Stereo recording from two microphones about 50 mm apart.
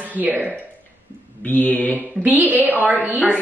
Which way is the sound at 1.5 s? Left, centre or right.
Left.